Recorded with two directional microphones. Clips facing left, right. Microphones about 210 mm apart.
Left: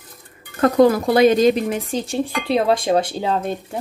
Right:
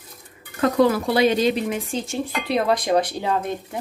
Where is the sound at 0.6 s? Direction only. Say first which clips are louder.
Left 4 dB; 45° left (ahead or behind); by 3.4 s 30° left (ahead or behind).